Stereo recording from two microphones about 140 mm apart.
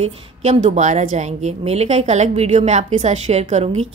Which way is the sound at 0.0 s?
50° right (ahead or behind).